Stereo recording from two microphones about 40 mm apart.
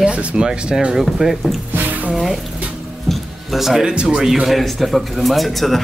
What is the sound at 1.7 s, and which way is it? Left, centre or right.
Music, right.